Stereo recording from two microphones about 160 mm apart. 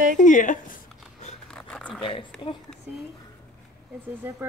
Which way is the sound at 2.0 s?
30° left (ahead or behind).